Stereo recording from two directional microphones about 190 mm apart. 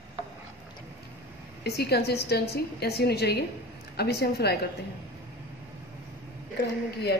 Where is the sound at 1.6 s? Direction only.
55° left (ahead or behind).